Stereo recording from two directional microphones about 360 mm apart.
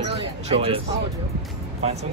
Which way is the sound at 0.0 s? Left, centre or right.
Centre.